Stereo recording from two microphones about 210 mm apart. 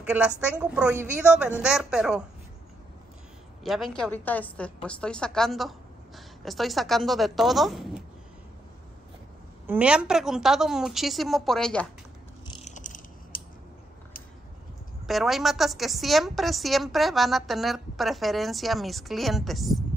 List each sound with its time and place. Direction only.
0.0 s a woman's voice: 5° right (ahead or behind)
3.6 s a woman's voice: centre (ahead or behind)
9.7 s a woman's voice: 5° right (ahead or behind)
12.6 s a sound: 35° left (ahead or behind)
15.0 s a woman's voice: centre (ahead or behind)